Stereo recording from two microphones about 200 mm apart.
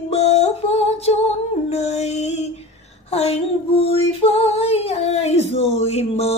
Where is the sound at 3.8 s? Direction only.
30° left (ahead or behind).